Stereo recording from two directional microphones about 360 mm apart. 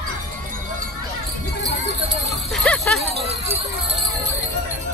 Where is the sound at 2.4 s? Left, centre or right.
Centre.